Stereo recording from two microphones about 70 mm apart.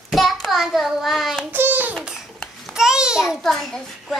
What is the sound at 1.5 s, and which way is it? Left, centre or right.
Child singing, right.